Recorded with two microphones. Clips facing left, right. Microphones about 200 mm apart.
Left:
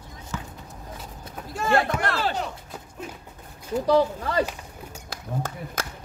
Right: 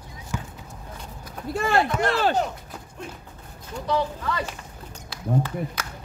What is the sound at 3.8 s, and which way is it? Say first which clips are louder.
Speech: left 4 dB; 35° left (ahead or behind).